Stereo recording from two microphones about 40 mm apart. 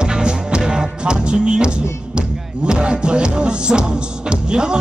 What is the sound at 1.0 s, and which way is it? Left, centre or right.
Music, right.